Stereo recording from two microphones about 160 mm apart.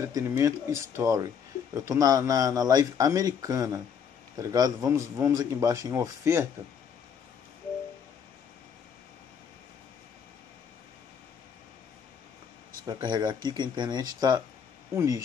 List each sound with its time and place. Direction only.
0.0 s a man's voice: 15° right (ahead or behind)
12.8 s a man's voice: 25° right (ahead or behind)